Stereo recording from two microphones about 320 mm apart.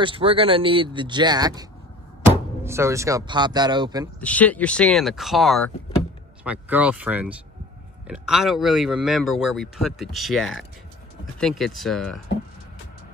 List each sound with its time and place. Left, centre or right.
0.0 s speech: centre
4.2 s speech: centre